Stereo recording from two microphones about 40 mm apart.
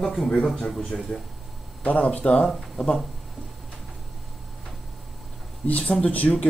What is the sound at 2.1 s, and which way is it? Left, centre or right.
Speech, left.